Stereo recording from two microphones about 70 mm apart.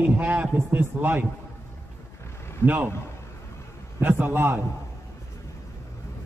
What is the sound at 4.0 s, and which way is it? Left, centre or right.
Speech, right.